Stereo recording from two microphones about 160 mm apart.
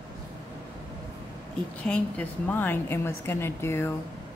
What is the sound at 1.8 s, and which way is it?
A woman's voice, 5° left (ahead or behind).